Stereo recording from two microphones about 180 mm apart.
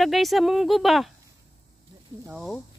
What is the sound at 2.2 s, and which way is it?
Speech, centre (ahead or behind).